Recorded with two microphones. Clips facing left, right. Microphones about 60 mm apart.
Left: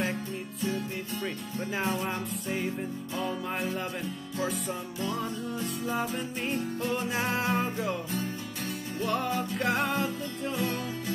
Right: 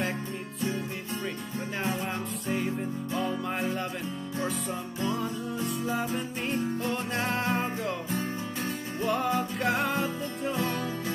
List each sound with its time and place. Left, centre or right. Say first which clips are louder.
2.0 s music: right 1 dB; centre
6.1 s music: right 1 dB; centre
9.0 s music: right 2 dB; centre
10.6 s music: even; right